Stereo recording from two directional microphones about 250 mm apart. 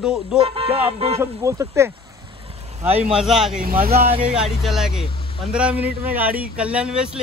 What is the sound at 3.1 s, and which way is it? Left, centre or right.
Speech, centre.